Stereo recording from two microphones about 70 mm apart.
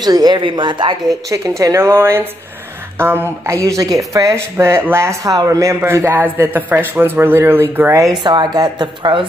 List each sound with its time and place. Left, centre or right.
0.0 s speech: right
1.6 s speech: right
3.4 s speech: right
5.2 s speech: right
5.8 s speech: right
7.9 s speech: right
8.2 s a woman's voice: right